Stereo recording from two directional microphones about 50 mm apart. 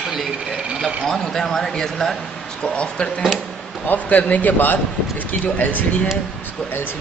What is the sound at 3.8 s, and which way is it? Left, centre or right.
A man's voice, left.